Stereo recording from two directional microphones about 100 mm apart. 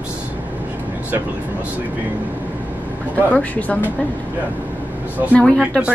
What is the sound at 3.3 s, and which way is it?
Speech, 15° left (ahead or behind).